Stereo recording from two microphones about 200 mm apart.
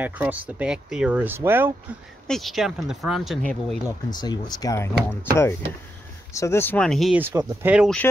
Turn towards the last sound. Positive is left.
turn(degrees=-10)  # may be behind; listen again after turning